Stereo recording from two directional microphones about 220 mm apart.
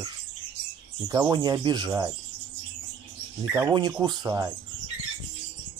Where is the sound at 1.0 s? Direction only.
15° right (ahead or behind).